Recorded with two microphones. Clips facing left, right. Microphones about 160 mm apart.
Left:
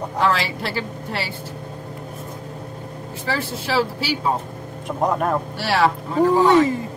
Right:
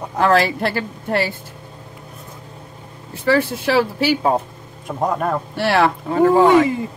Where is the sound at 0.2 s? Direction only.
50° right (ahead or behind).